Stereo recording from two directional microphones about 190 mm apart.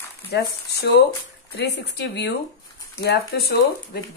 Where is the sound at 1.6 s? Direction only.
65° left (ahead or behind).